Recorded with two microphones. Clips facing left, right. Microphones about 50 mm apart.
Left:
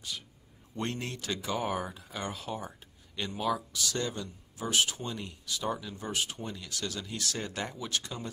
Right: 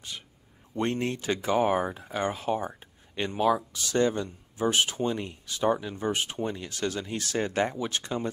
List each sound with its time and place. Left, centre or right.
0.7 s speech: right